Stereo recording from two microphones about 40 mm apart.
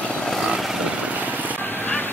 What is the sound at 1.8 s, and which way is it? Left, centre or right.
Vehicle, left.